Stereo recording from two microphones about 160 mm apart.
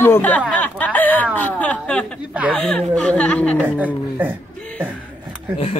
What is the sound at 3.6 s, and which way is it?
Speech, 10° right (ahead or behind).